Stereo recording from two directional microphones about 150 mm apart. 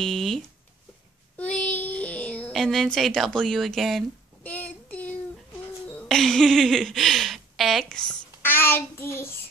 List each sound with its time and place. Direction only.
0.0 s speech: centre (ahead or behind)
1.4 s a sound: 10° left (ahead or behind)
4.4 s child singing: 10° left (ahead or behind)
5.9 s speech: 5° left (ahead or behind)
8.4 s child singing: 15° left (ahead or behind)